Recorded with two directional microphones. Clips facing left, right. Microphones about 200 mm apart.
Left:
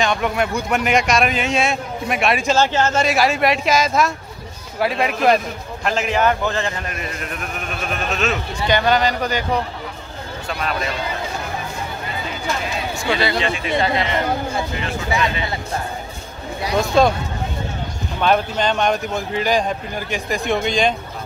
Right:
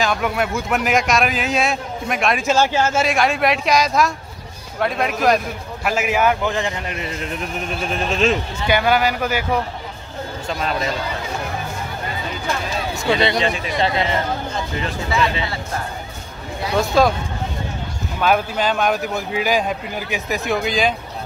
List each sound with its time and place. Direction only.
0.0 s a man's voice: 5° right (ahead or behind)
2.5 s speech: 10° right (ahead or behind)
3.1 s a man's voice: centre (ahead or behind); by 8.4 s 30° right (ahead or behind)
8.6 s speech: 10° right (ahead or behind)
13.0 s a man's voice: 20° right (ahead or behind)
17.0 s a man's voice: 5° right (ahead or behind)
18.2 s a man's voice: 5° right (ahead or behind)